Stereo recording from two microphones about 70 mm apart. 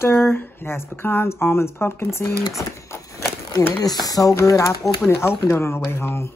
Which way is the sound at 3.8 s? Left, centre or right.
Left.